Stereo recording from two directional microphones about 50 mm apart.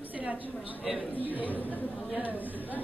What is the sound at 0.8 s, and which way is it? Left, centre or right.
Speech, centre.